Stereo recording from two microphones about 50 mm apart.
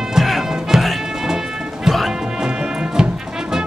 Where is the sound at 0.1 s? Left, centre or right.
Centre.